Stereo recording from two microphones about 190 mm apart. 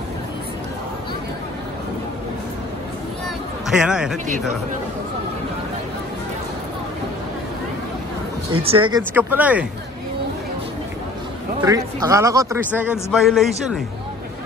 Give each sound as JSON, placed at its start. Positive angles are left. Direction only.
{"t": 3.6, "sound": "speech", "side_deg": -5}
{"t": 8.6, "sound": "speech", "side_deg": -25}
{"t": 9.1, "sound": "speech", "side_deg": -10}
{"t": 11.6, "sound": "speech", "side_deg": -20}